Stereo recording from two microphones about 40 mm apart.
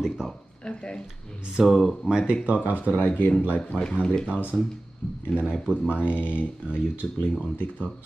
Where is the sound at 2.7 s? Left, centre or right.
Left.